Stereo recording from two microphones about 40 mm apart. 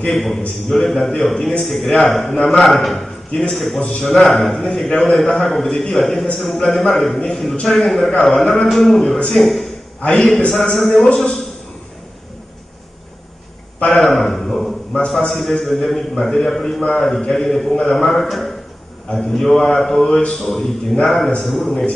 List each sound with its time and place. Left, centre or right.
0.0 s a man's voice: centre
13.8 s a sound: centre
15.0 s a man's voice: centre
20.1 s a man's voice: left
20.3 s a man's voice: centre